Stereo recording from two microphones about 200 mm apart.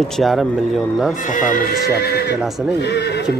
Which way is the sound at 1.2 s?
40° left (ahead or behind).